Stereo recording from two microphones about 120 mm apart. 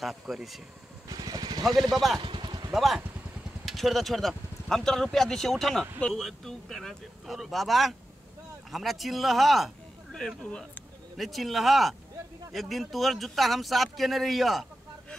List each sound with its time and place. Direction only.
0.0 s speech: centre (ahead or behind)
1.0 s vehicle: 35° right (ahead or behind)
2.7 s speech: centre (ahead or behind)